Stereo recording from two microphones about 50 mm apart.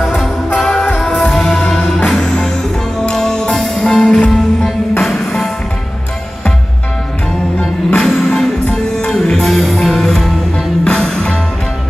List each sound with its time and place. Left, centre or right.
0.0 s music: centre
5.0 s music: centre
8.0 s music: centre